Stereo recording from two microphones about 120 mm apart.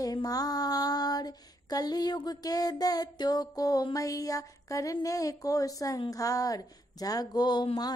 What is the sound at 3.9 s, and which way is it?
Speech, 30° left (ahead or behind).